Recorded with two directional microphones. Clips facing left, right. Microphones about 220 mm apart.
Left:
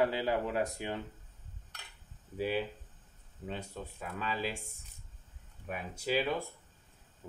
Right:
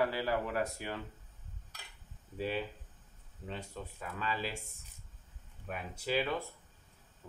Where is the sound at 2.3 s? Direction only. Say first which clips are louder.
Left 3 dB; 10° left (ahead or behind).